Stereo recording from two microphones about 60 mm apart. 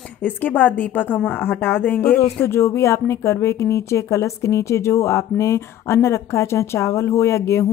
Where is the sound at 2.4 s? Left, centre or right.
Left.